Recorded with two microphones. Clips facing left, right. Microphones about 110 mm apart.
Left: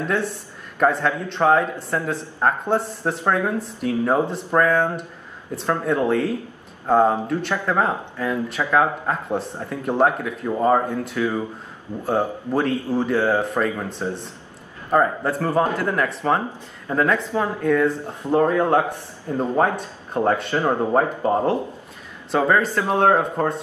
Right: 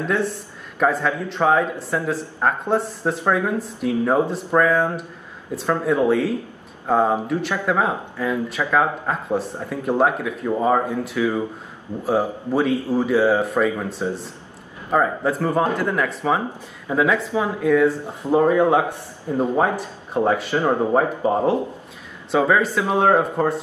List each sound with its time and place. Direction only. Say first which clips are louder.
0.1 s a man's voice: right 1 dB; centre (ahead or behind)